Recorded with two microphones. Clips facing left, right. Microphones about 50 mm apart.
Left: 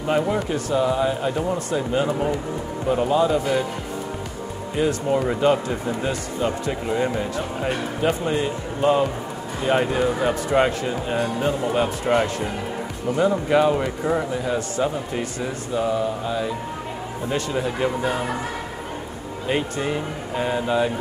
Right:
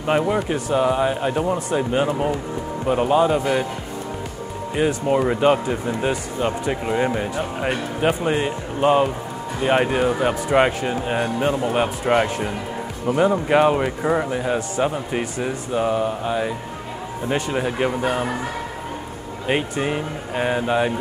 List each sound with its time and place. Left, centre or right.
0.5 s speech: right
4.7 s speech: right
19.7 s speech: right